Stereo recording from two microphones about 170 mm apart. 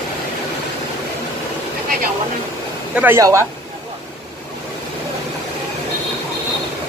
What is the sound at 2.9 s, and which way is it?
Speech, 15° right (ahead or behind).